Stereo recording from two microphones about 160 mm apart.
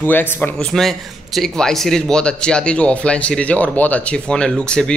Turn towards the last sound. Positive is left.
turn(degrees=5)  # may be behind; listen again after turning